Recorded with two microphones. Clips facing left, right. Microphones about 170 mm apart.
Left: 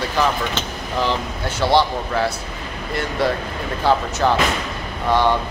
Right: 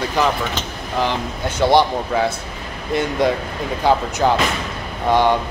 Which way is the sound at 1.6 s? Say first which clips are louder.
Right 3 dB; 15° right (ahead or behind).